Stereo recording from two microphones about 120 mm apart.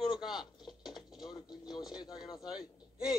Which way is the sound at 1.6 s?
Centre (ahead or behind).